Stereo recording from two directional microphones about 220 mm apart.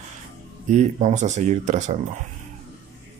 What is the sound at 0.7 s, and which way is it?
Speech, 30° right (ahead or behind).